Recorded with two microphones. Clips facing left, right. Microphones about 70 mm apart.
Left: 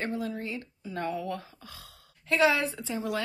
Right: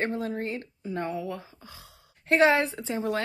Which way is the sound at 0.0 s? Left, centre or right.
Right.